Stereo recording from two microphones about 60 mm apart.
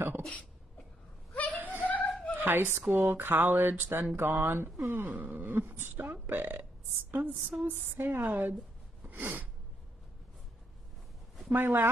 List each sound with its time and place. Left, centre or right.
1.3 s chuckle: left
1.6 s a sound: right
1.9 s chuckle: centre
2.3 s speech: right
5.4 s speech: right
7.1 s a sound: right
7.9 s speech: right
9.0 s sneeze: right
11.5 s speech: right